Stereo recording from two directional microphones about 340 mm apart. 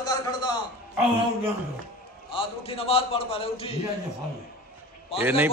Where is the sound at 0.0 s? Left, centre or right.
Centre.